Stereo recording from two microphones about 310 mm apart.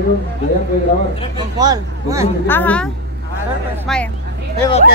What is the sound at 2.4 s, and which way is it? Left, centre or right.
Speech, centre.